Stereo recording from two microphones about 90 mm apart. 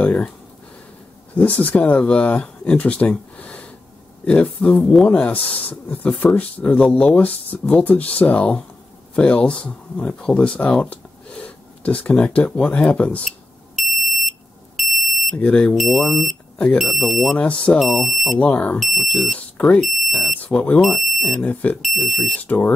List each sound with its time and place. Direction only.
0.0 s a sound: 15° left (ahead or behind)
1.3 s speech: 15° left (ahead or behind)
13.7 s smoke detector: centre (ahead or behind)
15.3 s speech: 15° left (ahead or behind)
15.8 s speech: centre (ahead or behind)
17.4 s speech: 10° left (ahead or behind)
18.4 s speech: 15° left (ahead or behind)
18.8 s speech: centre (ahead or behind); by 19.8 s 15° left (ahead or behind)
19.8 s speech: centre (ahead or behind)
20.3 s speech: 15° left (ahead or behind)
20.8 s speech: centre (ahead or behind)
21.4 s speech: 15° left (ahead or behind)
21.8 s speech: centre (ahead or behind)
22.4 s speech: 20° left (ahead or behind)